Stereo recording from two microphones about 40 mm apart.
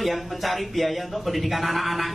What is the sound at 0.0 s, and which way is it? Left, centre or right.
A man's voice, centre.